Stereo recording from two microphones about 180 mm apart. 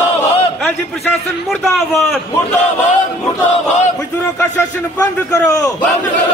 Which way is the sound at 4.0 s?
15° left (ahead or behind).